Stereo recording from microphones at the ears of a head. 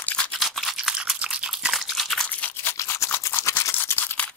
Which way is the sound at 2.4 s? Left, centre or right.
Left.